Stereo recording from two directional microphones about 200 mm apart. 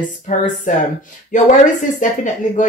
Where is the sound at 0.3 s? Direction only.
35° left (ahead or behind).